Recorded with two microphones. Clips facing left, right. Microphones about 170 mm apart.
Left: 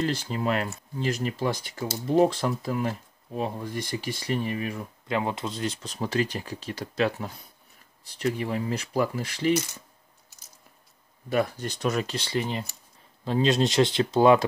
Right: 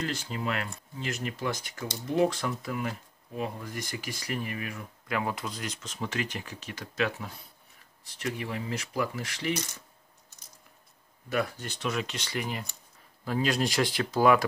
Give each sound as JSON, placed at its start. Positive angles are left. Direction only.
{"t": 0.1, "sound": "speech", "side_deg": 35}
{"t": 11.2, "sound": "speech", "side_deg": 35}